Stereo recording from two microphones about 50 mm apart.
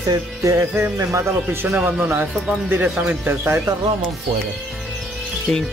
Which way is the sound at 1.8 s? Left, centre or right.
Right.